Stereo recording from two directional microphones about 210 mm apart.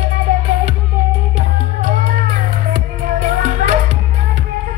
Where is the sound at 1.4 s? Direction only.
35° right (ahead or behind).